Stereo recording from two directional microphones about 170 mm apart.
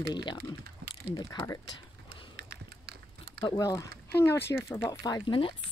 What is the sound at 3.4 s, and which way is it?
Speech, 20° left (ahead or behind).